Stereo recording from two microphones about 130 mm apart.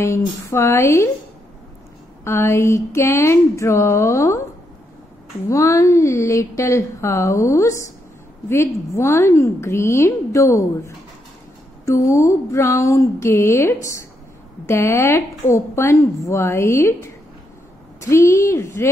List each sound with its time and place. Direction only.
0.0 s a woman's voice: 20° left (ahead or behind)
2.2 s a woman's voice: 20° left (ahead or behind)
5.5 s a woman's voice: 25° left (ahead or behind)